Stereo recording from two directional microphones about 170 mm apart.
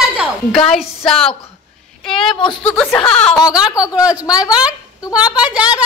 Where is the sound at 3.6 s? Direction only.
20° left (ahead or behind).